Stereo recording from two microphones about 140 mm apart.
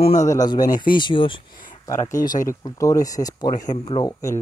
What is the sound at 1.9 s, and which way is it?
Speech, 20° left (ahead or behind).